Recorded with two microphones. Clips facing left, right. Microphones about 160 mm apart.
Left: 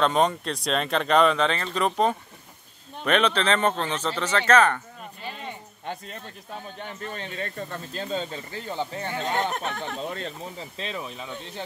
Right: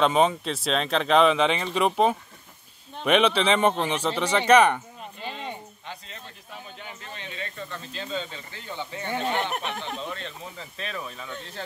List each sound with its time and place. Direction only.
0.0 s speech: 5° right (ahead or behind)
5.9 s a sound: 50° left (ahead or behind)
6.8 s speech: 50° left (ahead or behind)
10.8 s speech: 20° left (ahead or behind)